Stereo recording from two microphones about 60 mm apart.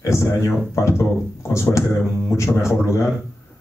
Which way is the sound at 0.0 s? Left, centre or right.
Left.